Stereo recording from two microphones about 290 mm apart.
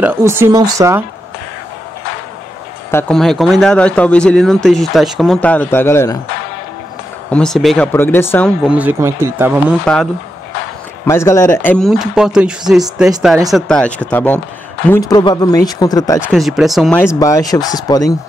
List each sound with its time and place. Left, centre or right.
0.0 s speech: centre
2.9 s speech: centre
7.2 s speech: centre
8.6 s speech: centre
11.1 s speech: centre
16.2 s speech: centre